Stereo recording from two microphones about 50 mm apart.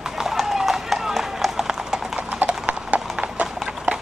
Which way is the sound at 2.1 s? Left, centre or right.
Right.